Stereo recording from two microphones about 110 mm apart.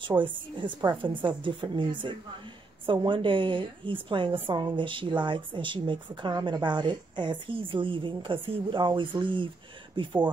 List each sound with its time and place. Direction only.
0.2 s a woman's voice: 45° right (ahead or behind)